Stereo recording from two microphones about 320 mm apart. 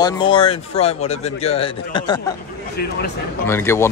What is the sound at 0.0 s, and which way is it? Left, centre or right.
Speech, centre.